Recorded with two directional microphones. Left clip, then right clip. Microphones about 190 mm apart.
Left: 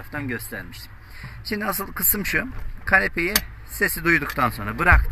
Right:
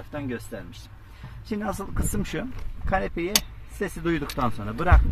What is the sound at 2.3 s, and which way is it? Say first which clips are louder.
Speech: left 8 dB; 5° right (ahead or behind).